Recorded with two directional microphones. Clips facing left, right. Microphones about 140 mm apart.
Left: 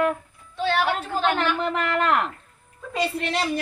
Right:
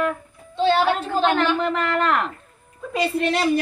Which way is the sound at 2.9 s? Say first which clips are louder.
Right 4 dB; 5° right (ahead or behind).